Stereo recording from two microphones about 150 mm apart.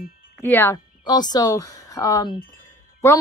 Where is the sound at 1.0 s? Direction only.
25° left (ahead or behind).